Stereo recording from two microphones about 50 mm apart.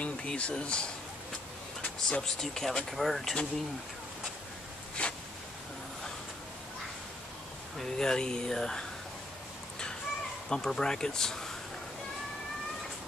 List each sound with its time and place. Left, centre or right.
0.0 s speech: left; by 3.3 s centre
5.0 s a sound: left
7.8 s speech: centre
10.5 s speech: centre